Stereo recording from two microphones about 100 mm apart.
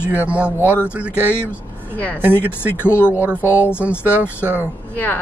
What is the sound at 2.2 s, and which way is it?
Speech, 20° right (ahead or behind).